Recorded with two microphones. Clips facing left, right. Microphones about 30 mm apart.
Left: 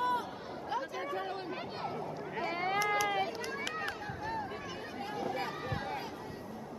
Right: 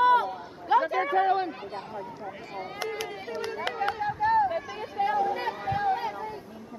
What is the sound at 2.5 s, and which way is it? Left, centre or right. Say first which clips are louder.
Speech: left 6 dB; left.